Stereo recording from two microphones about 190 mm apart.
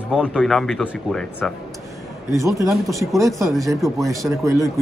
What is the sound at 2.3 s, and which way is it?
Speech, 15° right (ahead or behind).